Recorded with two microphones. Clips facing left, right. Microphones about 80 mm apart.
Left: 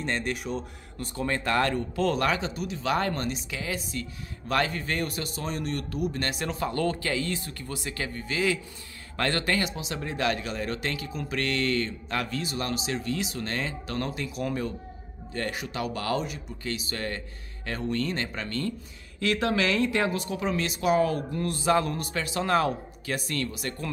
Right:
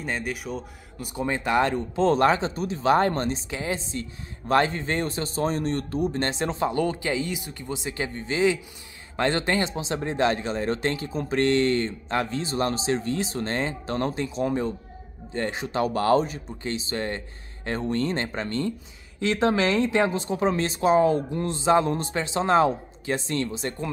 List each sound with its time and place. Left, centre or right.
0.0 s speech: centre
1.1 s speech: centre